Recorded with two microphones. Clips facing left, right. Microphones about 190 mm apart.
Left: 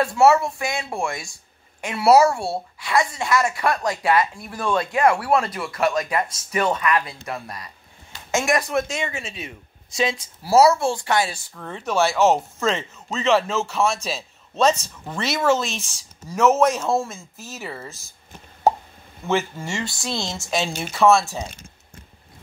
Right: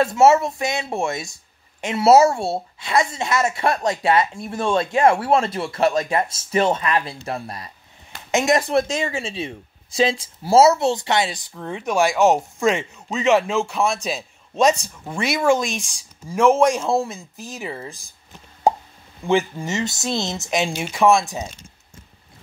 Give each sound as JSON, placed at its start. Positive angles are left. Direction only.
{"t": 0.0, "sound": "a woman's voice", "side_deg": -20}
{"t": 19.2, "sound": "speech", "side_deg": -15}